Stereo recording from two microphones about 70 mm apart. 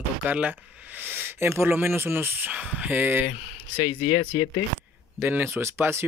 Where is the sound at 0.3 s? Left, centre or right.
Right.